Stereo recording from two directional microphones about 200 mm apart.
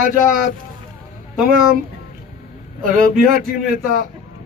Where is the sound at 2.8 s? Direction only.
45° right (ahead or behind).